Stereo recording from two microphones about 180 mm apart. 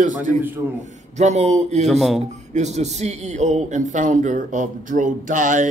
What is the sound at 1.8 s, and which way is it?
Speech, centre (ahead or behind).